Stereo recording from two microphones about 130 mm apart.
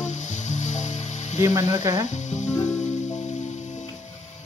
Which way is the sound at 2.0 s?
65° left (ahead or behind).